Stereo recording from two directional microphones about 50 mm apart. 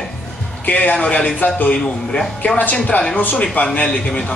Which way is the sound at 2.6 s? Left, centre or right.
Left.